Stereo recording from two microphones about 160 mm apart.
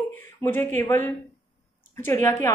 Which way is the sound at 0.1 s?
15° left (ahead or behind).